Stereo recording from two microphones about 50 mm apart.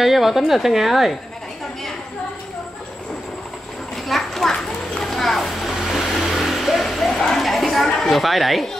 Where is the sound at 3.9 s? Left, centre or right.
Centre.